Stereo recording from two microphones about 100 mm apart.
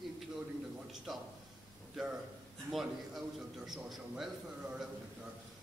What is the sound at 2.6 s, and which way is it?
A man's voice, centre (ahead or behind).